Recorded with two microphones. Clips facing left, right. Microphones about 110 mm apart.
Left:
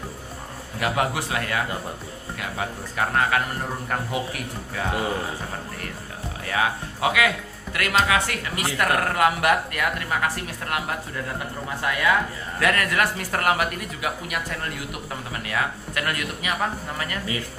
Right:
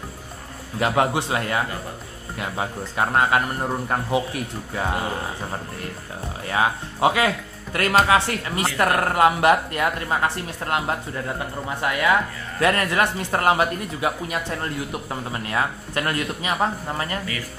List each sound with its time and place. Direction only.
0.7 s speech: 30° right (ahead or behind)
6.4 s speech: 30° right (ahead or behind)